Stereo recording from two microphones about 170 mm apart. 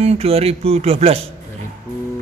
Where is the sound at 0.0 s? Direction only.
35° right (ahead or behind).